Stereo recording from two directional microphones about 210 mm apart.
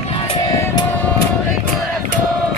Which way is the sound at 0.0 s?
25° left (ahead or behind).